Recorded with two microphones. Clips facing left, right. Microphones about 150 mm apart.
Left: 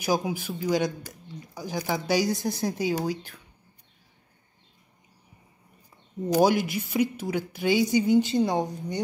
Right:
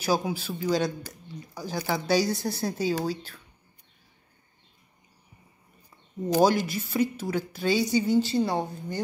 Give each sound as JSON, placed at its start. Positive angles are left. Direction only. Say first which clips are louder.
{"t": 0.0, "sound": "speech", "louder": "even", "side_deg": 15}
{"t": 6.4, "sound": "speech", "louder": "even", "side_deg": 15}